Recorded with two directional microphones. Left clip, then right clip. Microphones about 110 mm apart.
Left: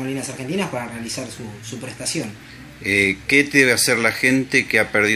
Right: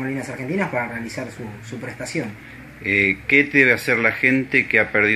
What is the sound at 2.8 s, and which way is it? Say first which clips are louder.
Speech: even; 65° left (ahead or behind).